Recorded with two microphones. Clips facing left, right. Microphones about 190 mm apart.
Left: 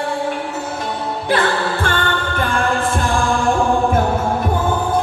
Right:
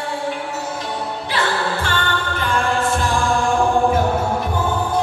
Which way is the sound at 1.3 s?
50° left (ahead or behind).